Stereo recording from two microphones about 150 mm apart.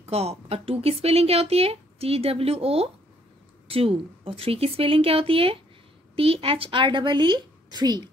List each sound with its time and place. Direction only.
0.0 s speech: 40° right (ahead or behind)